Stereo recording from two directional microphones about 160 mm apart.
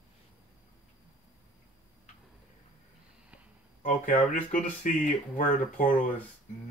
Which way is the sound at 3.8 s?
55° left (ahead or behind).